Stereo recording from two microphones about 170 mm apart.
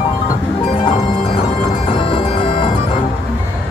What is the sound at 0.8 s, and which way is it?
Music, 35° left (ahead or behind).